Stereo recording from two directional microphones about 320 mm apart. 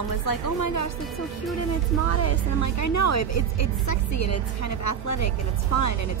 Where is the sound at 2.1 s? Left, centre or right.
Left.